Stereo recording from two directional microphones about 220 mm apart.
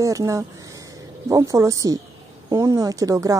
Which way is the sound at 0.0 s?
15° right (ahead or behind).